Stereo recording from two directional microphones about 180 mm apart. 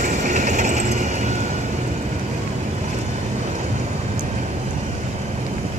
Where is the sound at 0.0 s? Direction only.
45° right (ahead or behind).